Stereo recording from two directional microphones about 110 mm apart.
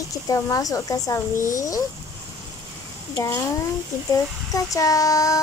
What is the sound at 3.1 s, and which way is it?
Speech, 25° left (ahead or behind).